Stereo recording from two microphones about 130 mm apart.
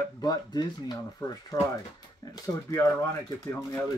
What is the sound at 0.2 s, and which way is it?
Speech, 30° left (ahead or behind).